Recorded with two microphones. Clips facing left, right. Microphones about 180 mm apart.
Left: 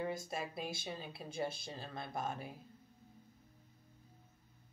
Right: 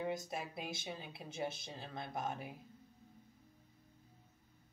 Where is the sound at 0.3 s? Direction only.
20° right (ahead or behind).